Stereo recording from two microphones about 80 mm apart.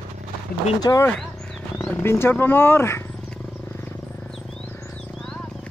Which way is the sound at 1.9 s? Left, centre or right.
Left.